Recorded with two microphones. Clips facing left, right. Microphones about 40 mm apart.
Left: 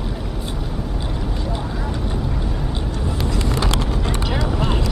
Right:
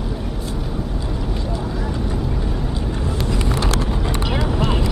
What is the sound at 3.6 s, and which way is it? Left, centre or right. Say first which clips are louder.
Vehicle: even; left.